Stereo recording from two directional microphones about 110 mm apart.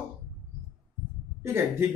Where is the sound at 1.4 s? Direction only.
25° right (ahead or behind).